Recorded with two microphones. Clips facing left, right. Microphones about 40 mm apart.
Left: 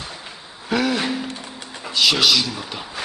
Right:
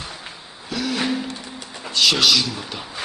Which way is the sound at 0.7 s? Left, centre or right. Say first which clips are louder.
Left 5 dB; left.